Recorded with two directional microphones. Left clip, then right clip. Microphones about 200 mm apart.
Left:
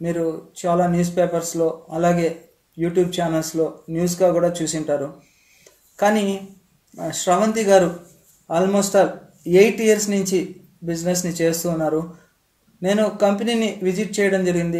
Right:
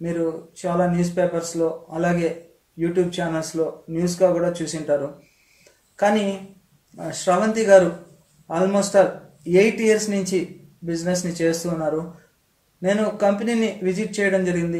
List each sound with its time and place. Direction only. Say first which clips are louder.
0.6 s speech: left 3 dB; 25° left (ahead or behind)
5.9 s speech: left 1 dB; 25° left (ahead or behind)